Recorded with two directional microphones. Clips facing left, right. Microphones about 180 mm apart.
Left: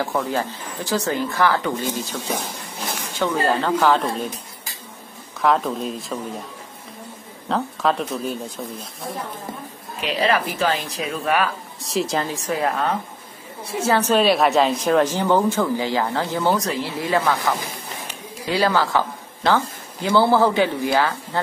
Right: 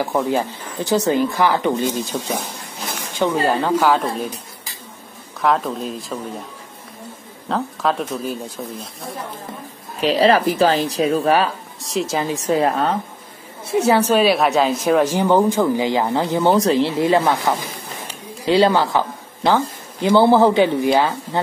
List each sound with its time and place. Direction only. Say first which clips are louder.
0.0 s a woman's voice: right 4 dB; 15° right (ahead or behind)
5.4 s speech: even; centre (ahead or behind)
7.4 s speech: even; centre (ahead or behind)
9.9 s speech: right 6 dB; 35° right (ahead or behind)
11.8 s speech: right 1 dB; centre (ahead or behind)
12.2 s speech: right 5 dB; 20° right (ahead or behind)
13.7 s a woman's voice: right 4 dB; 20° right (ahead or behind)